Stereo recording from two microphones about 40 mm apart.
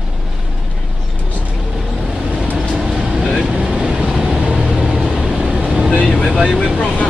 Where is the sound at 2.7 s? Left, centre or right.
Centre.